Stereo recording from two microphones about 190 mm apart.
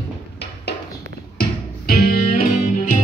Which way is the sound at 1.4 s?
55° left (ahead or behind).